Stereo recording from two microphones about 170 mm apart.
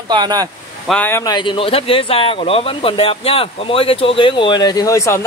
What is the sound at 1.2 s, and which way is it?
Speech, 25° left (ahead or behind).